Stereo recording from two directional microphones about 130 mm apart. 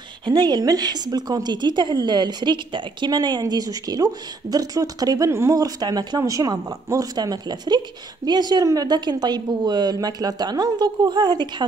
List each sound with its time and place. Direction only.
0.2 s speech: 35° right (ahead or behind)